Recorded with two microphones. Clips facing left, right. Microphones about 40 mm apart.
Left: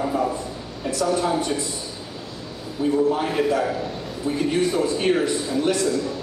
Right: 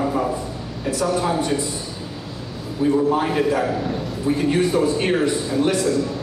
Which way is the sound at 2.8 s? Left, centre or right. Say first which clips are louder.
Right 2 dB; centre.